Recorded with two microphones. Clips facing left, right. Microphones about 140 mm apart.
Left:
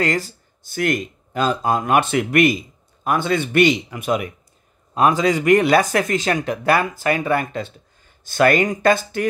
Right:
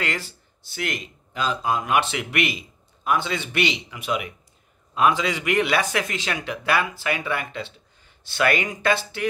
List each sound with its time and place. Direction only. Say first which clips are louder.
0.0 s speech: left 8 dB; 40° left (ahead or behind)